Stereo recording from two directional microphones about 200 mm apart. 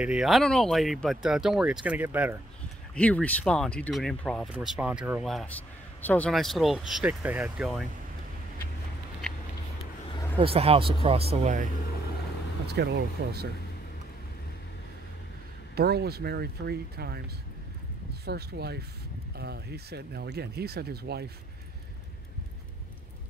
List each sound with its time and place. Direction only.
0.0 s speech: 5° right (ahead or behind)
2.9 s speech: 5° left (ahead or behind)
10.4 s speech: 30° right (ahead or behind)
12.6 s speech: 55° right (ahead or behind)
15.7 s speech: 55° right (ahead or behind)
18.2 s speech: 55° right (ahead or behind)